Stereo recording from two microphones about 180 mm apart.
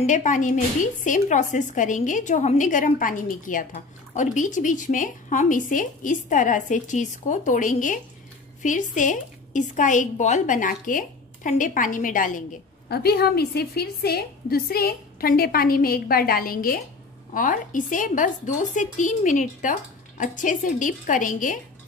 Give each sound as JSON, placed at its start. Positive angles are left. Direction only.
{"t": 0.0, "sound": "a woman's voice", "side_deg": 45}